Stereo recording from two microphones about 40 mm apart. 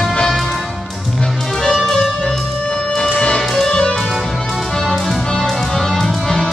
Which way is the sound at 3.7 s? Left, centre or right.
Centre.